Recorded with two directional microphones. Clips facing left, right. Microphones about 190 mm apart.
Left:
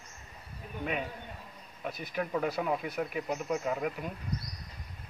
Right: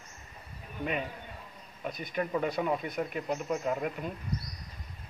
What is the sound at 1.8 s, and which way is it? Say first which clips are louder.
Speech: right 1 dB; 5° left (ahead or behind).